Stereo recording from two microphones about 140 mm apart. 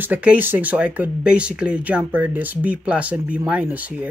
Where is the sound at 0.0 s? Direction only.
10° right (ahead or behind).